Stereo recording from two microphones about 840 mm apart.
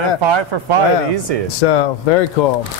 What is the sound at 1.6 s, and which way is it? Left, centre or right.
Speech, left.